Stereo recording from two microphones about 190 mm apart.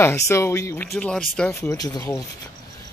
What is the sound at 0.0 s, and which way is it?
Speech, 15° left (ahead or behind).